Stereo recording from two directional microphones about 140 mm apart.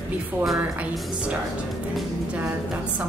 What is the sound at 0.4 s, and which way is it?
A woman's voice, 5° right (ahead or behind).